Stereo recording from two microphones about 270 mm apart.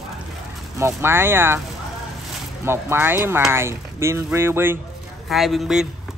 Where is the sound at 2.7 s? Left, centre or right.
Centre.